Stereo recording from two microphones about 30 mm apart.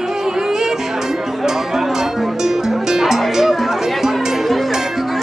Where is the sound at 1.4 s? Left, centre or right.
Centre.